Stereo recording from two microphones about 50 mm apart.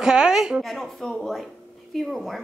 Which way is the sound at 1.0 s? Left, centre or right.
Centre.